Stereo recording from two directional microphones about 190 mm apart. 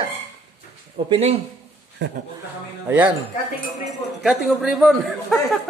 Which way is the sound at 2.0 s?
70° right (ahead or behind).